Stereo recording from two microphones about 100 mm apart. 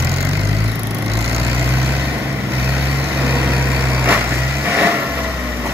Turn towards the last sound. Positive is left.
turn(degrees=-25)  # may be behind; listen again after turning